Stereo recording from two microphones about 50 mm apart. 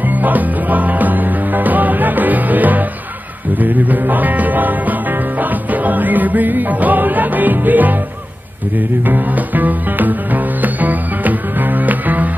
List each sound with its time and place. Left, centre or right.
0.1 s music: right